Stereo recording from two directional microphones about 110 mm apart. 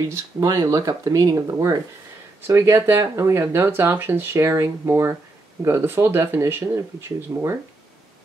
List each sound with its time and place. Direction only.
0.1 s speech: 30° right (ahead or behind)